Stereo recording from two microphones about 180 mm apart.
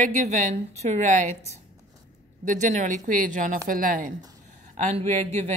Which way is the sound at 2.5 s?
45° right (ahead or behind).